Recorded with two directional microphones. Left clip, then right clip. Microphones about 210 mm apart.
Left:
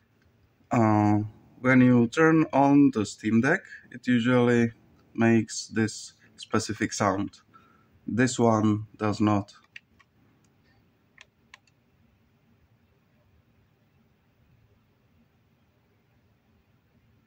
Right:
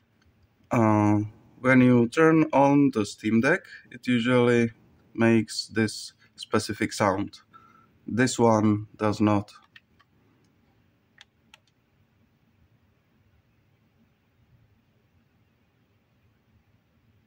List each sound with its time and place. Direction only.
0.7 s speech: 20° right (ahead or behind)